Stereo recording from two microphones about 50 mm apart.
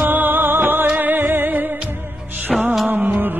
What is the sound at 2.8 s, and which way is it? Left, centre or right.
Music, right.